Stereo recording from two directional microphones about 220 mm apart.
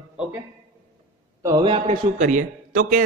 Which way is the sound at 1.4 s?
20° right (ahead or behind).